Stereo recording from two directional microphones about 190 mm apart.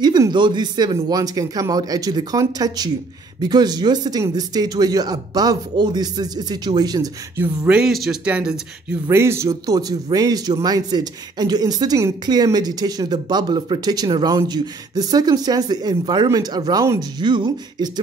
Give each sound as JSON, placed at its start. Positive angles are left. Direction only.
{"t": 0.0, "sound": "speech", "side_deg": -20}
{"t": 7.6, "sound": "speech", "side_deg": -5}